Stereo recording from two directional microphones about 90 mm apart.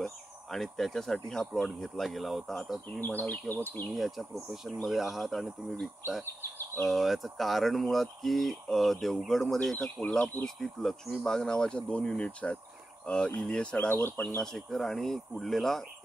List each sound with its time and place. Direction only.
0.0 s speech: 5° left (ahead or behind)
3.0 s speech: 20° left (ahead or behind)
3.9 s speech: centre (ahead or behind)
13.0 s cricket: 10° left (ahead or behind)
13.4 s speech: 10° left (ahead or behind)
14.2 s speech: 10° left (ahead or behind)